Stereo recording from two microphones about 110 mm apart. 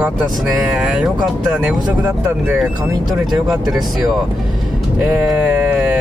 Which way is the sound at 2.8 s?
25° right (ahead or behind).